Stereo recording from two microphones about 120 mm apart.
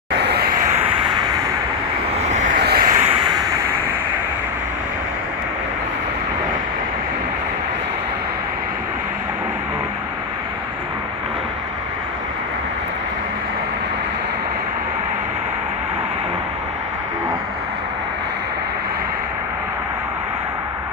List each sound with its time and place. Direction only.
0.6 s vehicle: 90° right
2.2 s vehicle: 85° right